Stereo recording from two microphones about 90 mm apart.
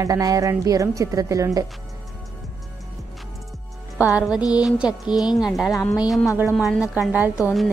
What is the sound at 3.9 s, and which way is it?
Music, 20° right (ahead or behind).